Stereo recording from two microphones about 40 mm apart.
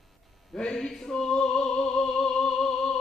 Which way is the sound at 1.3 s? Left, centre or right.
Left.